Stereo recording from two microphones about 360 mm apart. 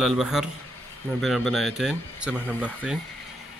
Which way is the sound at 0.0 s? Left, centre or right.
Centre.